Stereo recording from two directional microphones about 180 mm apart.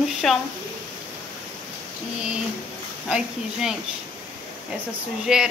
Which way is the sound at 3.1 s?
5° right (ahead or behind).